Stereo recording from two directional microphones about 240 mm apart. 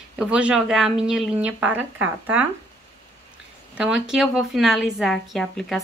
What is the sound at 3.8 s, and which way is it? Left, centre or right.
A woman's voice, centre.